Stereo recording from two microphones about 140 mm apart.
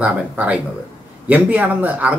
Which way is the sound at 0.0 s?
10° right (ahead or behind).